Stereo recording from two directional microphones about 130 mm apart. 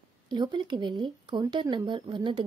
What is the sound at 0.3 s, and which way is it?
A woman's voice, 35° right (ahead or behind).